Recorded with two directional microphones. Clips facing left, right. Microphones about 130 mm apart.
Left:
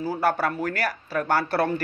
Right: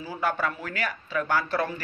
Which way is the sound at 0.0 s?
35° left (ahead or behind).